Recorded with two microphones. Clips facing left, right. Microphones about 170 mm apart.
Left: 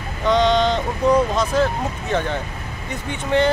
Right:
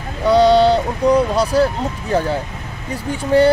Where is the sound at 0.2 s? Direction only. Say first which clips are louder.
Right 5 dB; 35° right (ahead or behind).